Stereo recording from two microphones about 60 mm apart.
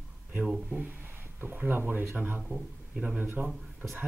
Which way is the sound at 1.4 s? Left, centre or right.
Right.